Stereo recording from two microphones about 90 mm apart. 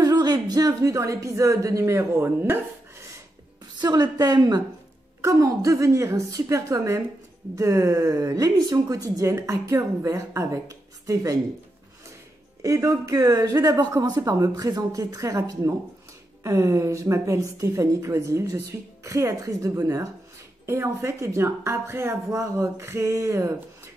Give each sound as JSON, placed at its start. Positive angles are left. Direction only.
{"t": 0.0, "sound": "speech", "side_deg": -45}
{"t": 3.8, "sound": "a woman's voice", "side_deg": -45}
{"t": 12.6, "sound": "a woman's voice", "side_deg": -35}
{"t": 20.6, "sound": "speech", "side_deg": -30}